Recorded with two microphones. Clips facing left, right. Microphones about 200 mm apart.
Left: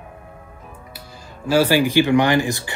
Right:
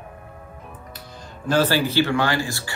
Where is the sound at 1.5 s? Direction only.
10° left (ahead or behind).